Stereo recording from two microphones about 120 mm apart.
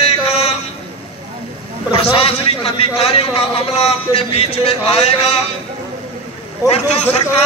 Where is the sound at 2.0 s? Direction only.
55° left (ahead or behind).